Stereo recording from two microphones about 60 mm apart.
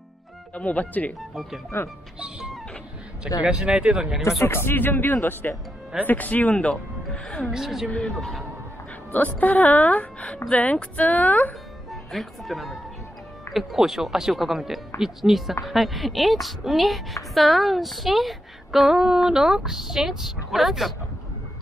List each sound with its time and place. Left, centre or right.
0.6 s speech: left
1.7 s speech: left
2.1 s music: centre
3.4 s speech: centre
4.4 s speech: left
6.5 s speech: centre
7.5 s a woman's voice: centre
9.1 s speech: left
11.9 s a woman's voice: centre